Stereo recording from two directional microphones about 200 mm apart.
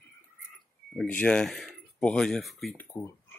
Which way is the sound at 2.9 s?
15° left (ahead or behind).